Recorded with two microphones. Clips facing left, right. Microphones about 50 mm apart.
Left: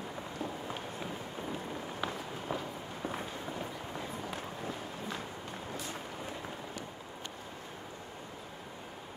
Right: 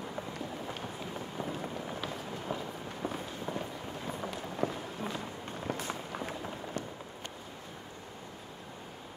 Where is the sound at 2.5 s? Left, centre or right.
Centre.